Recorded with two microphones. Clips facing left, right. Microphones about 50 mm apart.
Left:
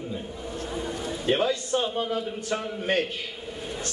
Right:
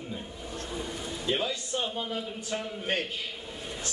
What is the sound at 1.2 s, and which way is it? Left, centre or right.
A man's voice, left.